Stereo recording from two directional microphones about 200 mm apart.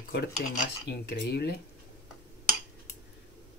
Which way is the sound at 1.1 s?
55° left (ahead or behind).